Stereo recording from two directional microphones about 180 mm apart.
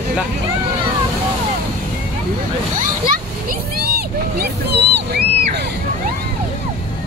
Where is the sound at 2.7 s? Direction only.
50° right (ahead or behind).